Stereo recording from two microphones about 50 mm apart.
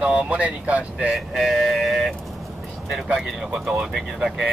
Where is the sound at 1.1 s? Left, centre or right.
Centre.